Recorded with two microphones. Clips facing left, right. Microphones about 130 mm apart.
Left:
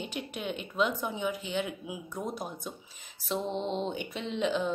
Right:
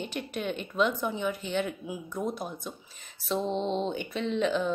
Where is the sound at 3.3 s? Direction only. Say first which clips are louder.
Right 3 dB; 15° left (ahead or behind).